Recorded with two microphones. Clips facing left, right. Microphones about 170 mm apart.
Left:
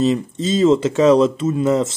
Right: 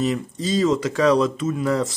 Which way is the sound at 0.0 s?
25° left (ahead or behind).